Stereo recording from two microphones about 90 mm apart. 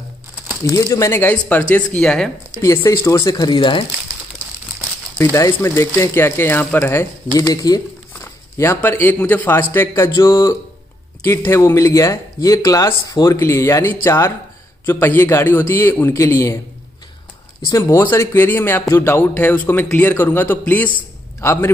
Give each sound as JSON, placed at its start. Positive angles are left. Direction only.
{"t": 0.7, "sound": "speech", "side_deg": 35}
{"t": 1.3, "sound": "speech", "side_deg": 20}
{"t": 2.6, "sound": "speech", "side_deg": 35}
{"t": 5.5, "sound": "speech", "side_deg": 30}
{"t": 7.3, "sound": "speech", "side_deg": 40}
{"t": 8.5, "sound": "speech", "side_deg": 30}
{"t": 17.6, "sound": "speech", "side_deg": 35}